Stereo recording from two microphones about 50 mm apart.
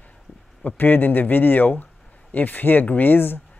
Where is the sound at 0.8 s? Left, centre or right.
Left.